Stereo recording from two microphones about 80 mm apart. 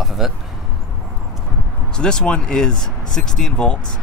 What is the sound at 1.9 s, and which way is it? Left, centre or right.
Speech, centre.